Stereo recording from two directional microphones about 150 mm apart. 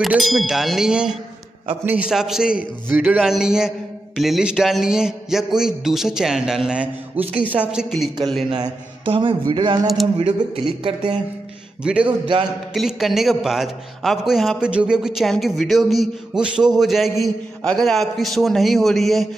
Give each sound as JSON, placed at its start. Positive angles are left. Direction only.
{"t": 0.0, "sound": "a man's voice", "side_deg": -5}
{"t": 8.5, "sound": "a man's voice", "side_deg": -35}
{"t": 11.8, "sound": "a man's voice", "side_deg": -5}